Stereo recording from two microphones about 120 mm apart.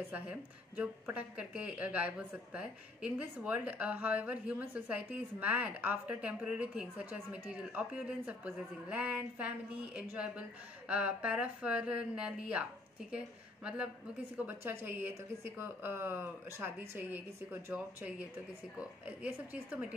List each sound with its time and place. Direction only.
0.1 s a woman's voice: 15° right (ahead or behind)
14.3 s a woman's voice: 15° right (ahead or behind)